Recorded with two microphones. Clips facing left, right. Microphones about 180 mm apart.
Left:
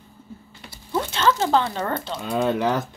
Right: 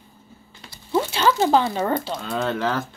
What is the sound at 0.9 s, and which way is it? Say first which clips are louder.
Speech: right 2 dB; 10° right (ahead or behind).